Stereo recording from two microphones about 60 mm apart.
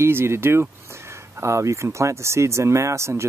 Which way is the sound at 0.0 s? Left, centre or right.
Right.